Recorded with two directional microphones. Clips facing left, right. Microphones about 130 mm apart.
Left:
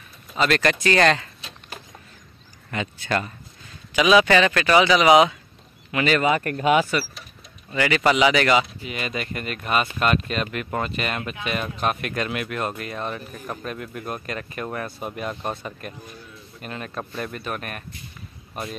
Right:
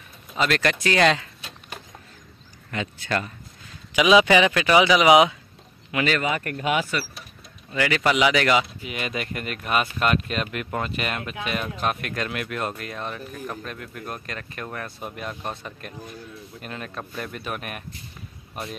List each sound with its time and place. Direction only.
0.4 s speech: centre (ahead or behind)
3.9 s speech: 15° right (ahead or behind)
6.3 s speech: 35° left (ahead or behind)
7.7 s speech: centre (ahead or behind)